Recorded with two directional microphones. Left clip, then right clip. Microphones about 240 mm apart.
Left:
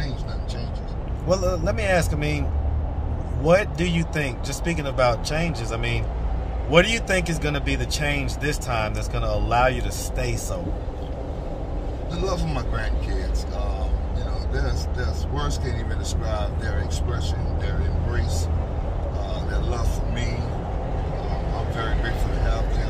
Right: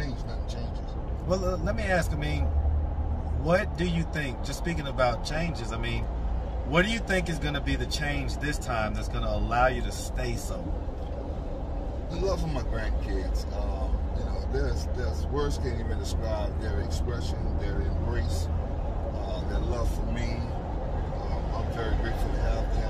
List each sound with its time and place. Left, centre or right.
1.3 s speech: left
3.4 s speech: left